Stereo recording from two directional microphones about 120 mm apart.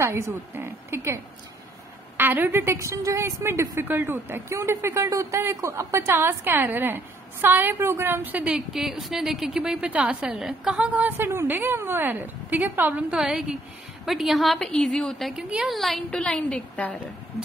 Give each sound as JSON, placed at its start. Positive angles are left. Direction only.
{"t": 0.0, "sound": "a woman's voice", "side_deg": -20}
{"t": 12.9, "sound": "a woman's voice", "side_deg": -5}